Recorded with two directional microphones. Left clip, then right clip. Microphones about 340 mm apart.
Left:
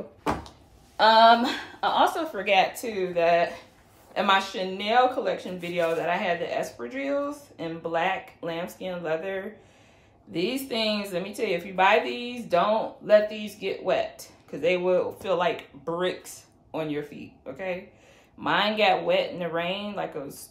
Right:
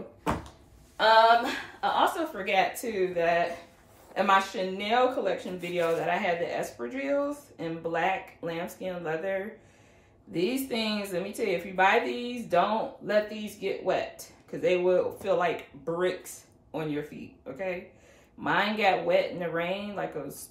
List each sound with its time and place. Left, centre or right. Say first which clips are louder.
1.0 s speech: left 3 dB; left
2.6 s a woman's voice: left 2 dB; centre